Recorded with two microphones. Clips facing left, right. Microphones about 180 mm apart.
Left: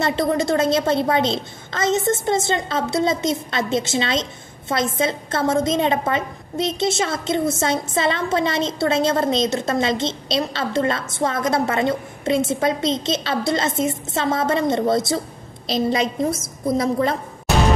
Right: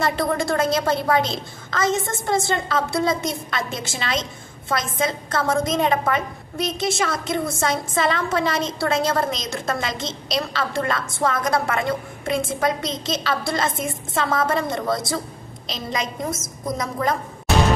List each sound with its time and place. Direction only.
0.0 s a woman's voice: 25° left (ahead or behind)